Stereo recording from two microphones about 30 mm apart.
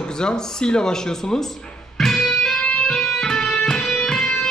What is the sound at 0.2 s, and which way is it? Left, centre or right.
A man's voice, left.